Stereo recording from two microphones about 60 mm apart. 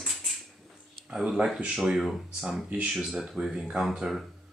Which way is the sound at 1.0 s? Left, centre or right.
Centre.